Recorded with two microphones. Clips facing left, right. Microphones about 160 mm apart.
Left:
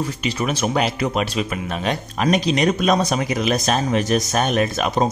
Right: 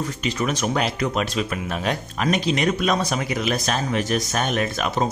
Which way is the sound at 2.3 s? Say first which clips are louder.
Left 3 dB; 35° left (ahead or behind).